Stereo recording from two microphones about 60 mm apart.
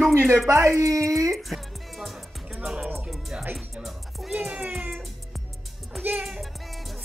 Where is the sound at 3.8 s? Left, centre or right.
Centre.